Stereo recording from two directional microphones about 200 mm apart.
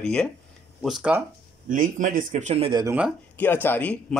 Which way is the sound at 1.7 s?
40° right (ahead or behind).